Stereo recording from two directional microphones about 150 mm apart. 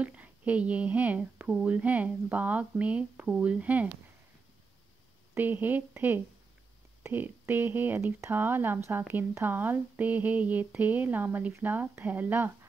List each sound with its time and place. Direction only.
0.0 s speech: 10° right (ahead or behind)
5.3 s speech: 10° right (ahead or behind)